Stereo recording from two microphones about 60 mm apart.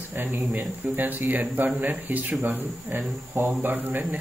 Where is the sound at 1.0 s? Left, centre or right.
Right.